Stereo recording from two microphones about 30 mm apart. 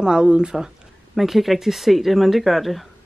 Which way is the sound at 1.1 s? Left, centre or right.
Centre.